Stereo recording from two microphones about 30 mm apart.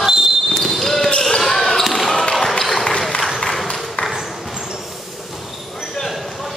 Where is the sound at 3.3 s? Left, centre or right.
Centre.